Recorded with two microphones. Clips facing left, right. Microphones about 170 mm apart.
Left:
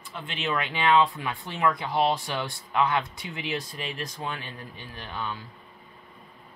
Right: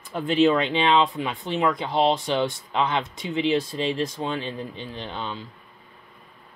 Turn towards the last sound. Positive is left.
turn(degrees=-20)  # may be behind; listen again after turning